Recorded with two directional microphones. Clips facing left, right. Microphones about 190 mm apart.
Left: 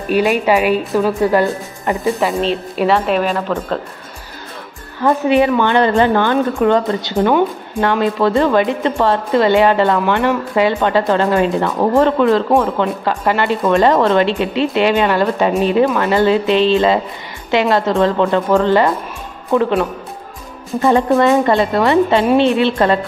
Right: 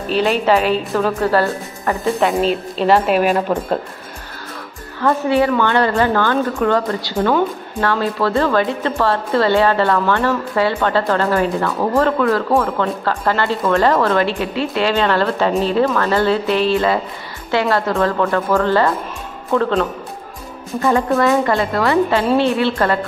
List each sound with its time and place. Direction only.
0.1 s a woman's voice: 10° left (ahead or behind)
2.0 s a woman's voice: centre (ahead or behind)
5.0 s a woman's voice: 15° left (ahead or behind)